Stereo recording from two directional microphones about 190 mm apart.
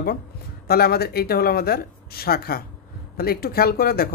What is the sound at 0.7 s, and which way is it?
Speech, 55° left (ahead or behind).